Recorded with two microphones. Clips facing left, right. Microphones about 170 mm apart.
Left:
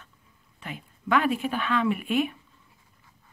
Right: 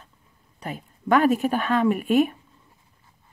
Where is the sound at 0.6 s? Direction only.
40° right (ahead or behind).